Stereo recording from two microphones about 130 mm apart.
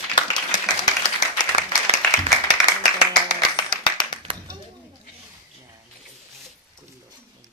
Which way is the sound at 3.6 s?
35° left (ahead or behind).